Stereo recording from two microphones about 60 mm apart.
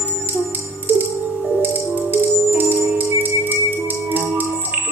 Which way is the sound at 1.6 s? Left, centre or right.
Right.